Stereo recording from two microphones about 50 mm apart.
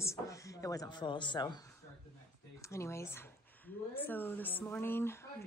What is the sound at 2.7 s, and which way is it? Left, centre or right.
Speech, left.